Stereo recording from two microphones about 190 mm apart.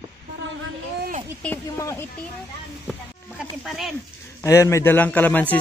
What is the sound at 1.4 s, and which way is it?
Speech, 10° left (ahead or behind).